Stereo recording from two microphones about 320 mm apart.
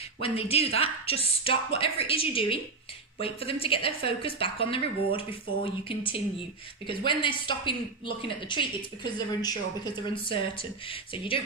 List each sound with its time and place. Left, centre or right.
0.2 s a woman's voice: centre